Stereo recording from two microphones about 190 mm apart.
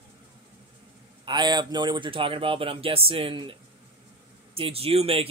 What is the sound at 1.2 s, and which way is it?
Speech, 25° right (ahead or behind).